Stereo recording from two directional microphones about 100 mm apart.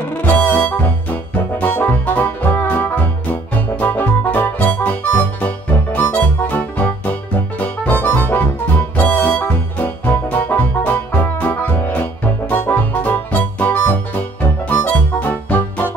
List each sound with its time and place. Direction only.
0.2 s music: 15° left (ahead or behind)